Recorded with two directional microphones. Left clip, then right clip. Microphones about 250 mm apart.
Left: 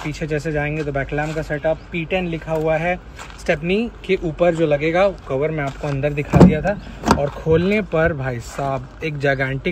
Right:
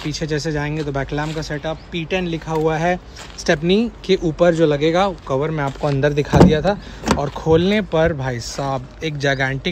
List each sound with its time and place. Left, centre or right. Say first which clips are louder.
0.0 s speech: right 1 dB; centre
5.9 s speech: right 5 dB; right
7.2 s speech: right 1 dB; centre